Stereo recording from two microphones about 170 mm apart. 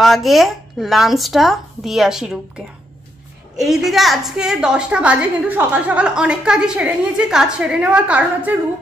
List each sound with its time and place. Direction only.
0.0 s a woman's voice: centre (ahead or behind)